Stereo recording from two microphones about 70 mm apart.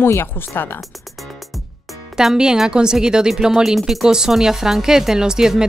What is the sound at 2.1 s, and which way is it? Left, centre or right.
Speech, centre.